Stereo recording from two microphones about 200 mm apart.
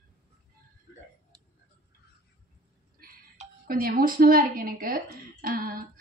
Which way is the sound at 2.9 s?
45° right (ahead or behind).